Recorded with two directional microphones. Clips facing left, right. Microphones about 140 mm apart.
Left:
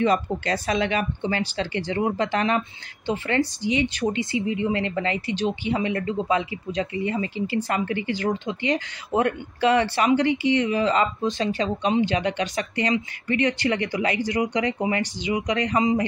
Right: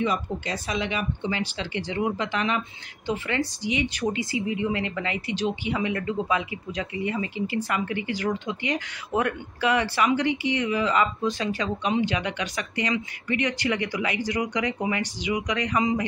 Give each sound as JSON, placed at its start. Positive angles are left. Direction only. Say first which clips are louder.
{"t": 0.7, "sound": "speech", "louder": "left 4 dB", "side_deg": 50}
{"t": 3.1, "sound": "speech", "louder": "left 3 dB", "side_deg": 30}